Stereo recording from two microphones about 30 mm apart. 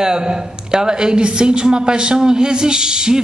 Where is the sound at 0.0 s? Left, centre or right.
Right.